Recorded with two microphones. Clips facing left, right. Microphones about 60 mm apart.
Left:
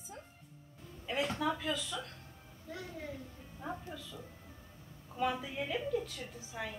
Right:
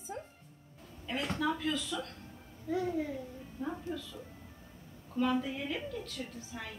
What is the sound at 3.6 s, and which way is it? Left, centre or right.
Speech, centre.